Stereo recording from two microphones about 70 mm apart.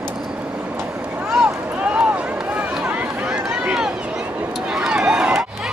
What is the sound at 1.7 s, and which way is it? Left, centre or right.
Run, centre.